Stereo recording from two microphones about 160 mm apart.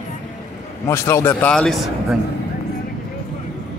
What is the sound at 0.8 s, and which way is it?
Speech, 15° left (ahead or behind).